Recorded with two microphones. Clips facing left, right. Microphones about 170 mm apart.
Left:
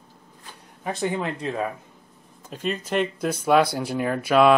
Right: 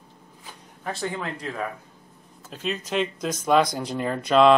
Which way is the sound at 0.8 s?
20° left (ahead or behind).